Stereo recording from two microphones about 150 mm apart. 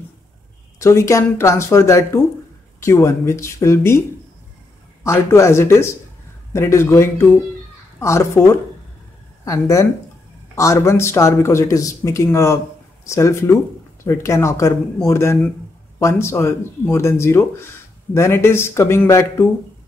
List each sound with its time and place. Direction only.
0.7 s speech: 20° left (ahead or behind)
5.0 s speech: 20° left (ahead or behind)